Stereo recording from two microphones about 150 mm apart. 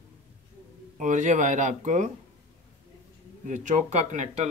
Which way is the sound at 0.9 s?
55° right (ahead or behind).